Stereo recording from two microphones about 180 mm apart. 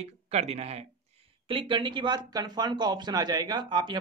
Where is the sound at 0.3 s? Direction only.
35° right (ahead or behind).